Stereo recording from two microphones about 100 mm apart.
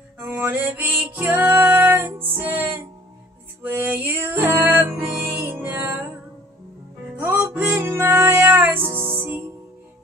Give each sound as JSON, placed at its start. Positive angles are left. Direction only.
{"t": 0.2, "sound": "music", "side_deg": -20}
{"t": 3.6, "sound": "music", "side_deg": -20}
{"t": 7.2, "sound": "music", "side_deg": -20}